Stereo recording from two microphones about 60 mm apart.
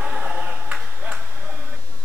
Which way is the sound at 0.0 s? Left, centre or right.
Centre.